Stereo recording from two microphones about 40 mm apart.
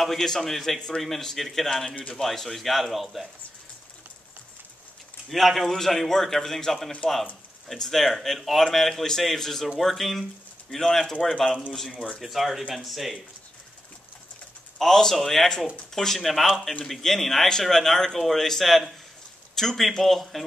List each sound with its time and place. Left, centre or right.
0.2 s speech: centre
0.7 s speech: centre
1.0 s speech: centre
5.3 s a man's voice: centre
12.2 s speech: centre
14.8 s a man's voice: centre